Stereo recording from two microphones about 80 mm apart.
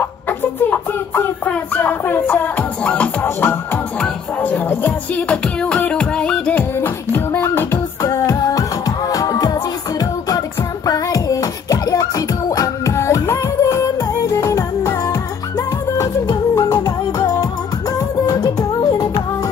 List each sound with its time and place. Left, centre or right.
0.3 s a sound: left
1.5 s music: left
3.3 s music: left; by 6.6 s centre
6.8 s beatboxing: left
8.0 s music: left